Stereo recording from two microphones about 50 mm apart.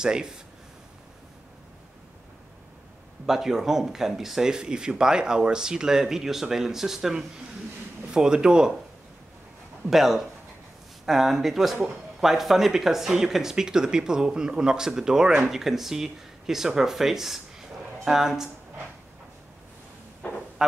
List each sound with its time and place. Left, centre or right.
0.0 s speech: centre
3.3 s speech: centre
9.8 s speech: centre